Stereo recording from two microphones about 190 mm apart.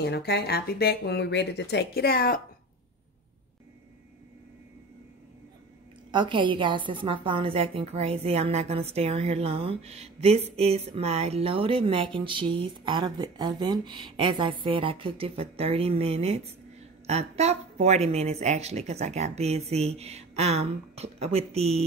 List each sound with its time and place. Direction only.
0.0 s speech: 60° left (ahead or behind)
6.1 s a woman's voice: 25° right (ahead or behind)